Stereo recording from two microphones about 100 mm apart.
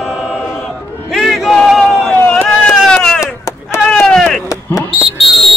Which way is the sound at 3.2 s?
30° left (ahead or behind).